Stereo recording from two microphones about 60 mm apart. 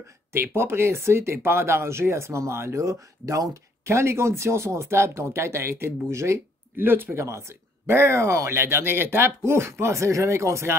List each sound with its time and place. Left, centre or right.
0.3 s speech: right
6.8 s speech: right
7.2 s speech: right
7.8 s speech: right